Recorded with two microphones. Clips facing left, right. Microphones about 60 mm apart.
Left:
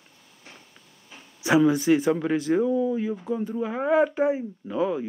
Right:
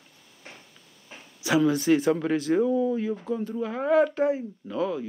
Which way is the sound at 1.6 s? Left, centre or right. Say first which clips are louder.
Left 1 dB; centre.